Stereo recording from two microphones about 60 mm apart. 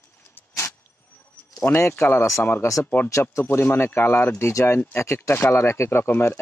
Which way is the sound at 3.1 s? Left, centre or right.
Left.